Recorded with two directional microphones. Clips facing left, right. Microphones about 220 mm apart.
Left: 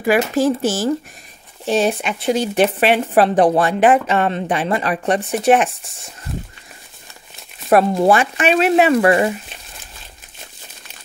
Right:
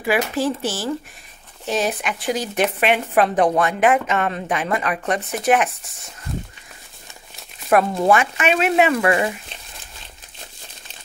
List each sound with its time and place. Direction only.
0.0 s speech: 45° left (ahead or behind)
1.7 s speech: 30° left (ahead or behind)
7.7 s speech: 30° left (ahead or behind)